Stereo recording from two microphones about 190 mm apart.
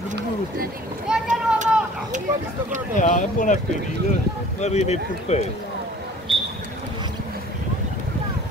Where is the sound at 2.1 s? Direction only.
40° right (ahead or behind).